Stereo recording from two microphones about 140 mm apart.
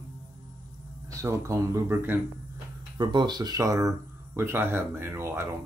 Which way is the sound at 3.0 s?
30° right (ahead or behind).